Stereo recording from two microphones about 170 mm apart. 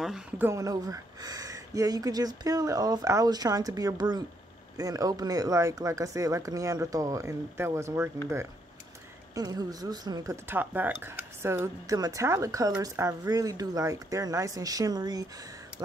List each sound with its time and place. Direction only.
0.0 s speech: centre (ahead or behind)
0.5 s speech: 20° right (ahead or behind)
9.3 s speech: 20° right (ahead or behind)